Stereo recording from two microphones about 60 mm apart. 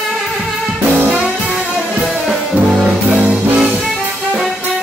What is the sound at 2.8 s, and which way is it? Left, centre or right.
Music, right.